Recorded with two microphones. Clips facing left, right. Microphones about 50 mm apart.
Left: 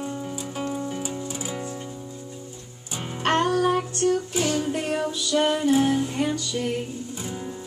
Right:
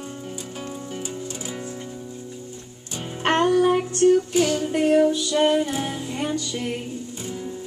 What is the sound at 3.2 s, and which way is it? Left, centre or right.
Music, right.